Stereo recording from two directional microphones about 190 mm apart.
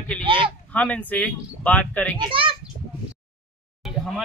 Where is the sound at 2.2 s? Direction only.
25° right (ahead or behind).